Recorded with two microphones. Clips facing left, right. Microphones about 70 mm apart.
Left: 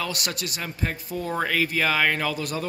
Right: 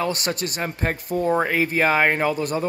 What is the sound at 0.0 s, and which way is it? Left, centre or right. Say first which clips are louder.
Speech: right 6 dB; right.